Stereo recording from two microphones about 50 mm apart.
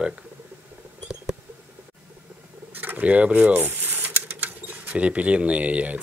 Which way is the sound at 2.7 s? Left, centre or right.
Right.